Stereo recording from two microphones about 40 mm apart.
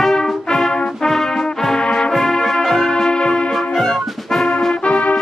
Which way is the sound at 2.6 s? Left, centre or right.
Centre.